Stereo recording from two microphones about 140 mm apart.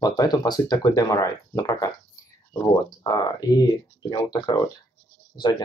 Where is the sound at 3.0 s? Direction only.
20° left (ahead or behind).